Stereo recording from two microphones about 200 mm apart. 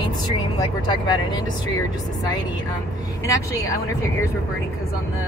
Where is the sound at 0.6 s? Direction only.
20° left (ahead or behind).